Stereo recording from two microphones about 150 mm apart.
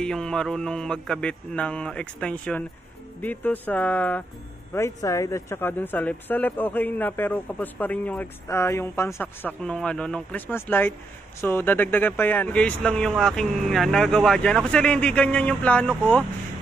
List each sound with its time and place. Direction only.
0.0 s speech: 5° left (ahead or behind)